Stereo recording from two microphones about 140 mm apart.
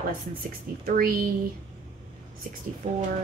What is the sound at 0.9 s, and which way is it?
Speech, 90° right.